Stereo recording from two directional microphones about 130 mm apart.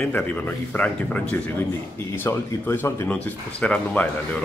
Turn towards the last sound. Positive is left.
turn(degrees=10)  # may be behind; listen again after turning